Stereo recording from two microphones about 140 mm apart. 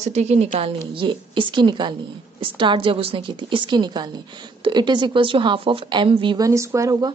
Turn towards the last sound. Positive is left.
turn(degrees=-20)  # may be behind; listen again after turning